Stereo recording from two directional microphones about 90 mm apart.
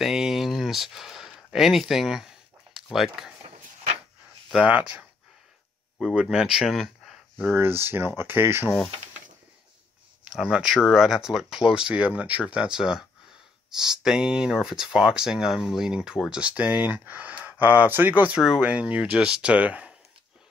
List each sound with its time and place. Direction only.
0.0 s a sound: 5° right (ahead or behind)
5.9 s speech: 5° right (ahead or behind)
7.4 s speech: 25° right (ahead or behind)
10.3 s speech: 5° right (ahead or behind)
18.2 s speech: 10° right (ahead or behind)